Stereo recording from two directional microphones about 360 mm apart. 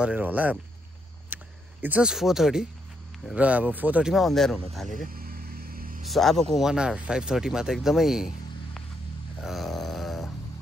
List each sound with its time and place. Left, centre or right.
0.0 s speech: centre
1.3 s a sound: centre
3.3 s speech: centre
5.1 s vehicle: right
6.0 s speech: centre
9.4 s a sound: centre